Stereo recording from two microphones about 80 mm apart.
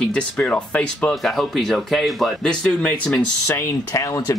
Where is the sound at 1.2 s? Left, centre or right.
Centre.